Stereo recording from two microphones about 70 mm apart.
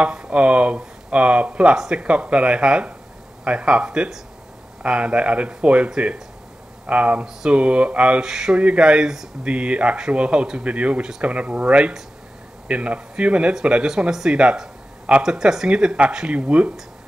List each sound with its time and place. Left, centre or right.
0.0 s speech: centre